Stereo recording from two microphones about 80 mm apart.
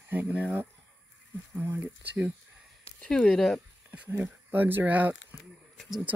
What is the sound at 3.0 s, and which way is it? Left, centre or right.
Speech, centre.